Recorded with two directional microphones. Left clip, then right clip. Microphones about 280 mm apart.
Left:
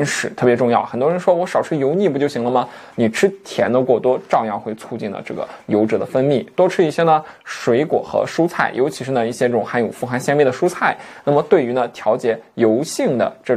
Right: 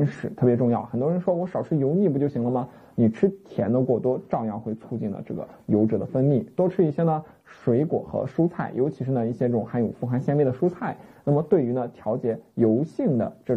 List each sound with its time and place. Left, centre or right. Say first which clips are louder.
0.0 s speech: left 8 dB; centre